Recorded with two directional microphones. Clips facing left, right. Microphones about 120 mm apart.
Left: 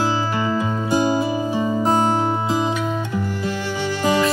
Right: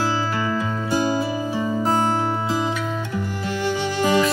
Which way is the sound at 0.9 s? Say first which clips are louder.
Left 3 dB; 20° left (ahead or behind).